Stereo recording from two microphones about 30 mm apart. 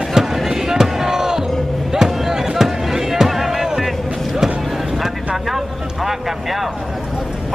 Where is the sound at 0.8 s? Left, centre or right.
Centre.